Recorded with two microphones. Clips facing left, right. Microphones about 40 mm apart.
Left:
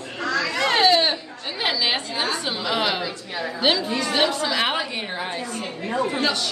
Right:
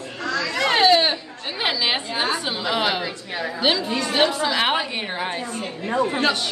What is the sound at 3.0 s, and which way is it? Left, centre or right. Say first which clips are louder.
Speech: right 1 dB; centre.